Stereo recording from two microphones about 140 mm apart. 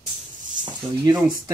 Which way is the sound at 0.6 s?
35° right (ahead or behind).